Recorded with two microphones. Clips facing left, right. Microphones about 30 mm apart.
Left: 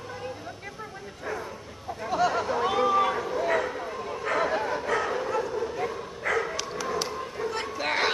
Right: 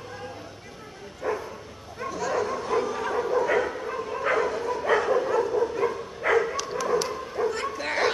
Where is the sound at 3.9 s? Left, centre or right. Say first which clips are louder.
Right 3 dB; centre.